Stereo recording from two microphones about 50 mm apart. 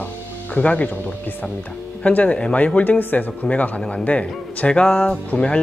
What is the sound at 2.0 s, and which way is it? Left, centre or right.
Speech, left.